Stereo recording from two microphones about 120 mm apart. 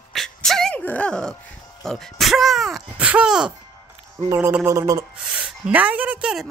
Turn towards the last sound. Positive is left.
turn(degrees=-5)  # may be behind; listen again after turning